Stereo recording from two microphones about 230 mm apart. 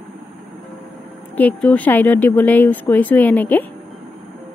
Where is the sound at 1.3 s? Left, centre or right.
Centre.